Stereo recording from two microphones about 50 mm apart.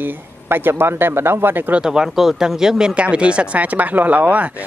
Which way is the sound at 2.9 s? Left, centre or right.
Right.